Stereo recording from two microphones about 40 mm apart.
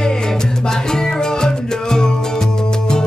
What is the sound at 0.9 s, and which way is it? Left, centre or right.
Music, centre.